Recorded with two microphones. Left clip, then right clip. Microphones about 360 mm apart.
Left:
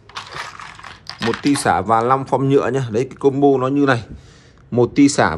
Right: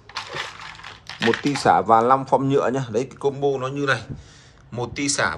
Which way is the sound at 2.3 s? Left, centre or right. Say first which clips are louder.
Left 3 dB; centre.